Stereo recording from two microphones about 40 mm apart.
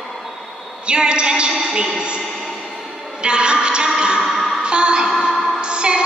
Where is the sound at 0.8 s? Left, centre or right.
Right.